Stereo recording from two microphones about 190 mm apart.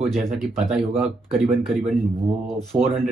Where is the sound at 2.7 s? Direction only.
30° right (ahead or behind).